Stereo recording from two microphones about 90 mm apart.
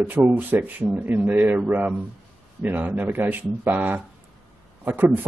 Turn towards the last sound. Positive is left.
turn(degrees=-20)  # may be behind; listen again after turning